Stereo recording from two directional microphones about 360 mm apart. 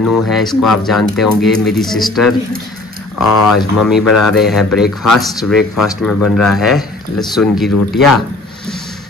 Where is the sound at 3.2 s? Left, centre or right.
Left.